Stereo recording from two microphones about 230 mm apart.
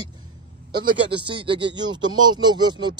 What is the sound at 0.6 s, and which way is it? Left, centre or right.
Speech, right.